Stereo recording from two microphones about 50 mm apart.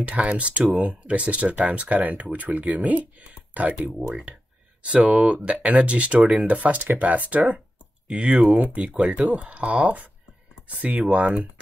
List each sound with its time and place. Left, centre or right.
0.0 s speech: right